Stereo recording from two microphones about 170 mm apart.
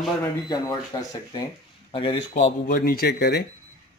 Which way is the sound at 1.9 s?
30° left (ahead or behind).